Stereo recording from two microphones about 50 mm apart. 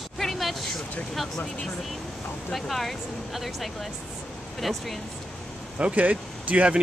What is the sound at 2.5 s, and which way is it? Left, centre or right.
Speech, centre.